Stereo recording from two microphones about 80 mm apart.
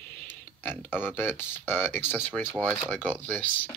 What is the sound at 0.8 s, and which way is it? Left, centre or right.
Speech, left.